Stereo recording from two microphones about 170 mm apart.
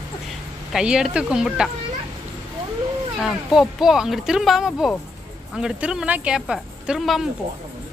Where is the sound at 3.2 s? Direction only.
Centre (ahead or behind).